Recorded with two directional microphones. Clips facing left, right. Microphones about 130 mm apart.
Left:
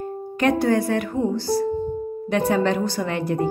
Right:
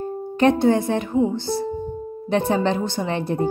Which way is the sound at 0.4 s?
25° right (ahead or behind).